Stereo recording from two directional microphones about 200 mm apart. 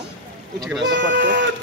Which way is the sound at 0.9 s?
60° right (ahead or behind).